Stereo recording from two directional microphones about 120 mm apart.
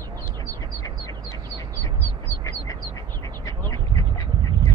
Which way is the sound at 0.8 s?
30° left (ahead or behind).